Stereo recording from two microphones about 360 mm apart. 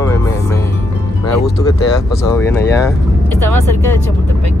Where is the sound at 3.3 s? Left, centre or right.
Right.